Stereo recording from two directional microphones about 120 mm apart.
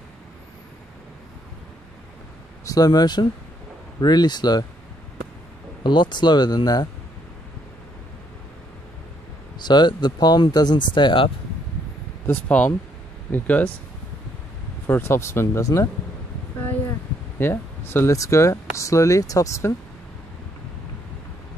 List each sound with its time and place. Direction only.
2.6 s speech: 30° left (ahead or behind)
5.9 s speech: 40° left (ahead or behind)
9.6 s speech: 40° left (ahead or behind)
12.3 s speech: 10° left (ahead or behind)
14.9 s speech: 20° left (ahead or behind)
17.4 s speech: 20° left (ahead or behind)